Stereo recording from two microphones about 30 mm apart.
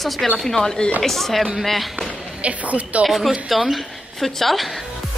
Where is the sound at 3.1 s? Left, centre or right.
Centre.